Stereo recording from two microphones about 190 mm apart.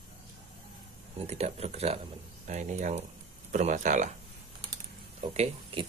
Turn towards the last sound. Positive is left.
turn(degrees=-30)  # may be behind; listen again after turning